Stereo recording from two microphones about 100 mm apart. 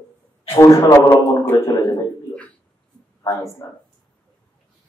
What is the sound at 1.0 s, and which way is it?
Speech, 20° left (ahead or behind).